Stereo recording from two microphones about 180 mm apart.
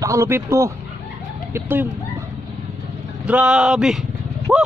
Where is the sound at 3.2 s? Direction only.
5° right (ahead or behind).